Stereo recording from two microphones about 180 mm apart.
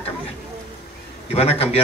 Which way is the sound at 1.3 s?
35° left (ahead or behind).